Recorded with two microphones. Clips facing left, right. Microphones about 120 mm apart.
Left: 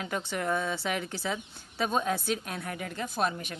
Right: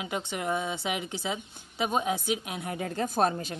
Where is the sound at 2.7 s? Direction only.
35° right (ahead or behind).